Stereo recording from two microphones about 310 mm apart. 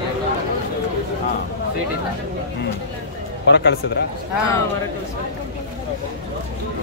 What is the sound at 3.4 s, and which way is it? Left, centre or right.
Speech, left.